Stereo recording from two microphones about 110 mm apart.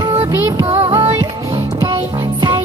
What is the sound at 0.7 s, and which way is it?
Music, 70° right (ahead or behind).